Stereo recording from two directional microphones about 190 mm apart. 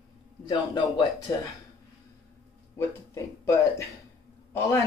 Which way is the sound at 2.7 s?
15° left (ahead or behind).